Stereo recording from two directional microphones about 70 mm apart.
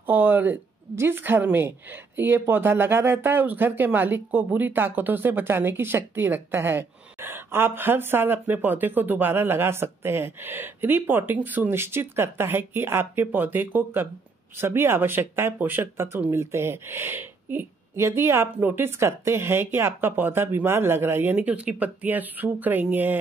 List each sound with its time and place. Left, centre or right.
0.0 s speech: right